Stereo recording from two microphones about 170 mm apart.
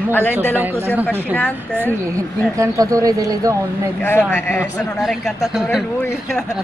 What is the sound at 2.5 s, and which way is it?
Speech, 20° right (ahead or behind).